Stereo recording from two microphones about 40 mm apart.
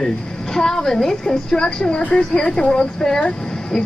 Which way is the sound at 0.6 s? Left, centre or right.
Centre.